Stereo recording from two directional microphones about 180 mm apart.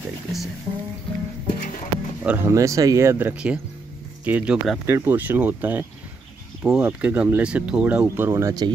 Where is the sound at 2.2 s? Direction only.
10° right (ahead or behind).